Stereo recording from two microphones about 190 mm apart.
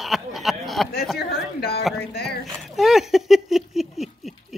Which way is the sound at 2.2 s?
Centre (ahead or behind).